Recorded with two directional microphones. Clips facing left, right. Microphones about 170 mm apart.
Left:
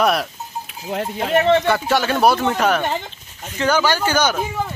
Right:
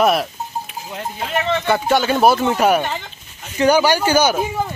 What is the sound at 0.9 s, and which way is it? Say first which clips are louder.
Speech: left 8 dB; 60° left (ahead or behind).